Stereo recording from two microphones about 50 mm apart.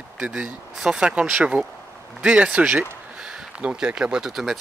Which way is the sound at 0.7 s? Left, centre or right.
Centre.